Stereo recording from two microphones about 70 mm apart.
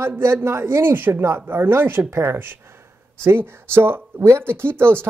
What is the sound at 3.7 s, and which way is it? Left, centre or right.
Speech, right.